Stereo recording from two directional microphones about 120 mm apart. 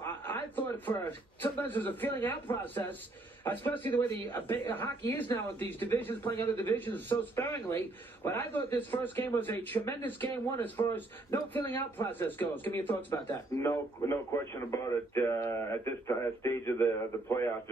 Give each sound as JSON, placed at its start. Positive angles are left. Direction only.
{"t": 0.0, "sound": "a man's voice", "side_deg": 20}